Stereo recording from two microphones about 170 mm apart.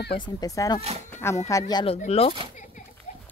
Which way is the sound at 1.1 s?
15° left (ahead or behind).